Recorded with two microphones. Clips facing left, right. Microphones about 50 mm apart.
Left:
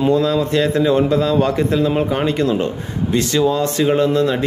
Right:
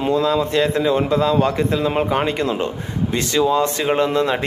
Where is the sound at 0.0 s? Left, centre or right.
Centre.